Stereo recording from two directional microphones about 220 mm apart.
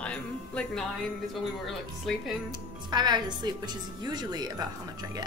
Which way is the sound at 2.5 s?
20° right (ahead or behind).